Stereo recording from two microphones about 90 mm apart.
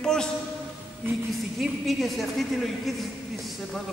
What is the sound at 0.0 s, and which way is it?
Speech, 5° left (ahead or behind).